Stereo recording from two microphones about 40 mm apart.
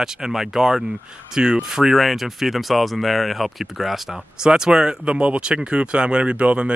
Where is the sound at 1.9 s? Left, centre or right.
Centre.